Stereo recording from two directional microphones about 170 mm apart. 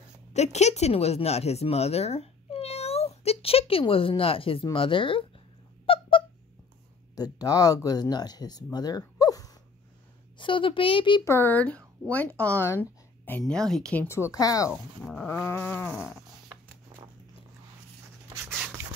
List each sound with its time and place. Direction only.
0.3 s speech: 40° left (ahead or behind)
5.9 s squeak: 30° left (ahead or behind)
7.2 s speech: 20° left (ahead or behind)
8.7 s a sound: 25° left (ahead or behind)
10.3 s speech: 30° left (ahead or behind)
11.2 s speech: 15° left (ahead or behind)
14.7 s speech: centre (ahead or behind)
15.4 s speech: 10° left (ahead or behind)